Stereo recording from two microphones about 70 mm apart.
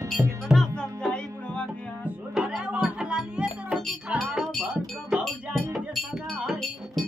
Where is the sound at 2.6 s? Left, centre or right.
Centre.